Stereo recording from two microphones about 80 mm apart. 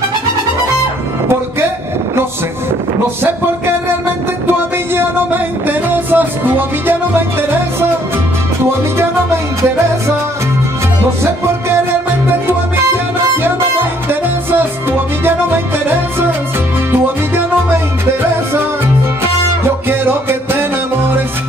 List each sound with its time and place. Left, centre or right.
5.7 s music: right
14.0 s music: right
19.9 s music: right